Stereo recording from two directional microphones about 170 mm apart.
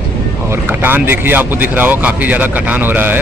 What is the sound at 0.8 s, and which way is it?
Speech, 10° right (ahead or behind).